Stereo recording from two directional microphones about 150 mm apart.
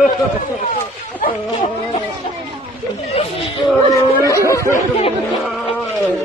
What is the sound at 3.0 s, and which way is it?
Speech, 40° left (ahead or behind).